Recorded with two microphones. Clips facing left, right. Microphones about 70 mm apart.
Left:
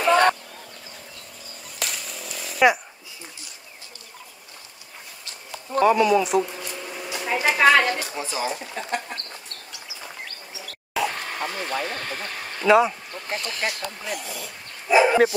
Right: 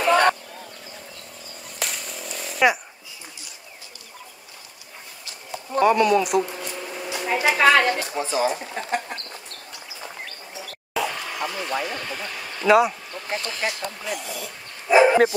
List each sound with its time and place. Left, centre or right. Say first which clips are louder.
0.0 s vehicle: even; centre
1.8 s chainsaw: right 1 dB; centre
5.7 s speech: even; centre
8.1 s speech: right 5 dB; right
10.6 s a sound: left 1 dB; centre
11.1 s vehicle: right 1 dB; left
11.9 s speech: even; left
12.6 s speech: even; centre
15.0 s dog: right 1 dB; centre